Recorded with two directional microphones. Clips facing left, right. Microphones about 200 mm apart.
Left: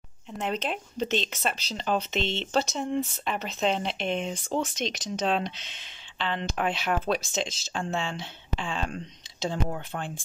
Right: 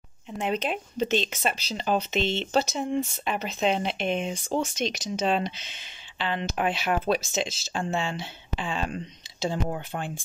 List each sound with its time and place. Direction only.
0.3 s speech: 5° right (ahead or behind)
9.9 s speech: 5° right (ahead or behind)